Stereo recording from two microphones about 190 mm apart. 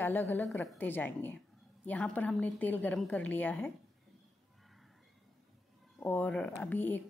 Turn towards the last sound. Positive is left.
turn(degrees=10)  # may be behind; listen again after turning